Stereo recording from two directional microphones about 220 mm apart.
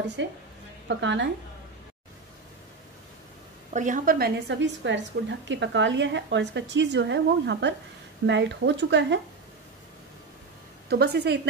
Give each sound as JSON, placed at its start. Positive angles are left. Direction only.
{"t": 0.2, "sound": "a woman's voice", "side_deg": -55}
{"t": 3.7, "sound": "a woman's voice", "side_deg": -35}
{"t": 10.9, "sound": "speech", "side_deg": -45}